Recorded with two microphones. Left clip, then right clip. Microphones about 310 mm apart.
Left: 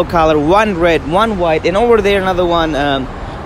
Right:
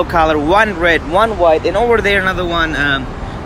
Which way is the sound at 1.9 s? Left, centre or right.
Centre.